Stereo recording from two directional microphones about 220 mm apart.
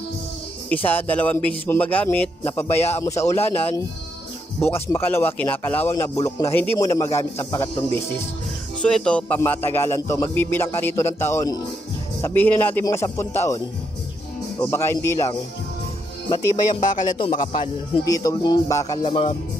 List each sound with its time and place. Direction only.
0.8 s speech: 10° left (ahead or behind)
8.8 s speech: 5° left (ahead or behind)
14.6 s speech: 10° left (ahead or behind)
17.1 s speech: 20° left (ahead or behind)